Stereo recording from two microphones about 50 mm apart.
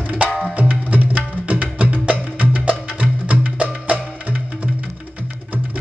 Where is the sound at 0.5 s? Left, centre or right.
Right.